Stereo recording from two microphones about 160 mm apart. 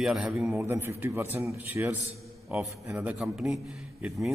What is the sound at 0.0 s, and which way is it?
A man's voice, 5° right (ahead or behind).